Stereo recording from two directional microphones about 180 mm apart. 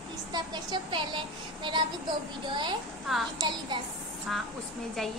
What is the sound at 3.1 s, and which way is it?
Speech, centre (ahead or behind).